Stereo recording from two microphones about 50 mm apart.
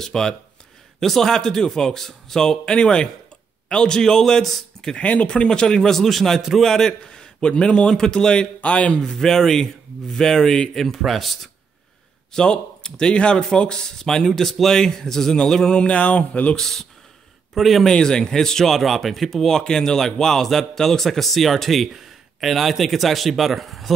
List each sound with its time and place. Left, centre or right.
0.0 s a man's voice: centre
4.9 s a man's voice: left
8.5 s speech: left
9.0 s a man's voice: centre
12.4 s a man's voice: centre
16.5 s a man's voice: centre
17.9 s speech: centre